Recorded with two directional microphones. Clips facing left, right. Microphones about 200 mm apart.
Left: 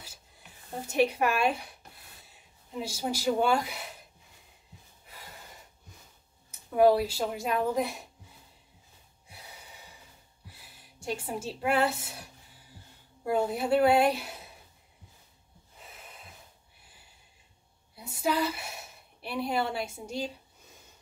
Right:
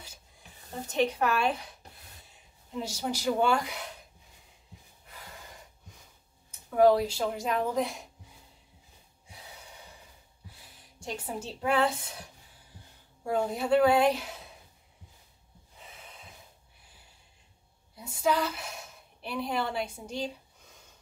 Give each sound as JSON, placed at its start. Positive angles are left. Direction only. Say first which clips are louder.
{"t": 0.8, "sound": "a woman's voice", "louder": "left 1 dB", "side_deg": 10}
{"t": 2.8, "sound": "a woman's voice", "louder": "left 1 dB", "side_deg": 10}
{"t": 6.8, "sound": "a woman's voice", "louder": "even", "side_deg": 5}
{"t": 11.0, "sound": "a woman's voice", "louder": "left 2 dB", "side_deg": 5}
{"t": 13.3, "sound": "a woman's voice", "louder": "even", "side_deg": 5}
{"t": 15.9, "sound": "snort", "louder": "even", "side_deg": 5}
{"t": 17.9, "sound": "speech", "louder": "right 1 dB", "side_deg": 10}